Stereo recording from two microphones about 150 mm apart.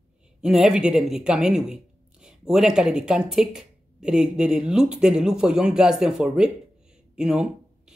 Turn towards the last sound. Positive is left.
turn(degrees=-5)  # may be behind; listen again after turning